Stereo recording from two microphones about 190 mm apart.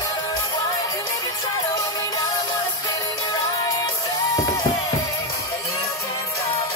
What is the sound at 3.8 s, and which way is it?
Music, 20° left (ahead or behind).